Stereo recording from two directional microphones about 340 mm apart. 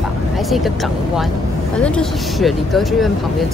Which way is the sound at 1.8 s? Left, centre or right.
Centre.